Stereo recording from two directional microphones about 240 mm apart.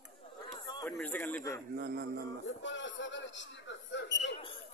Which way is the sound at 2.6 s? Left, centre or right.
Left.